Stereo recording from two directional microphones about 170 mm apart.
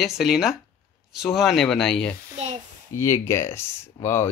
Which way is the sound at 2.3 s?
40° right (ahead or behind).